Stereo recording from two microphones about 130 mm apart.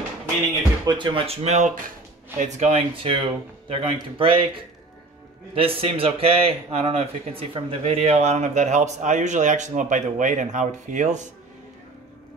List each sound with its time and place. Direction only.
0.8 s a man's voice: 40° right (ahead or behind); by 2.8 s 60° right (ahead or behind)
2.9 s speech: 40° right (ahead or behind)
5.5 s a man's voice: 45° right (ahead or behind); by 11.2 s 70° right (ahead or behind)